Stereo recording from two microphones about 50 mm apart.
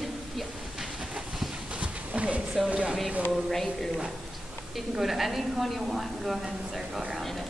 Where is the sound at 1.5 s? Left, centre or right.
Right.